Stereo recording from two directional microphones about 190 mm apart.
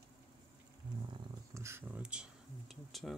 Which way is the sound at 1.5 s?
15° right (ahead or behind).